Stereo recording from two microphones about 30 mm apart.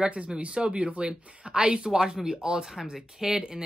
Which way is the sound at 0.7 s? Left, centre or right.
Right.